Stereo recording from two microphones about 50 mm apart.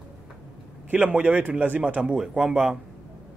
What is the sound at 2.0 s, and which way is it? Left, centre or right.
Speech, right.